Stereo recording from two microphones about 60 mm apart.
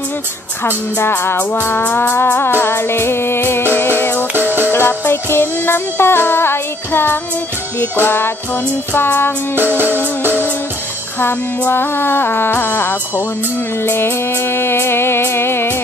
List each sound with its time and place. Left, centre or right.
0.7 s music: left
11.1 s music: left